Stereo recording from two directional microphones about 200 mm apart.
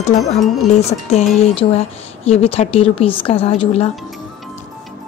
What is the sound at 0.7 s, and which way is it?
A woman's voice, 35° left (ahead or behind).